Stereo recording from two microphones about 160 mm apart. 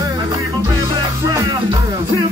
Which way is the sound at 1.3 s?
25° right (ahead or behind).